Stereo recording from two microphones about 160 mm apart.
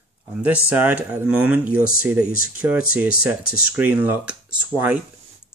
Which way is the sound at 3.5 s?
70° left (ahead or behind).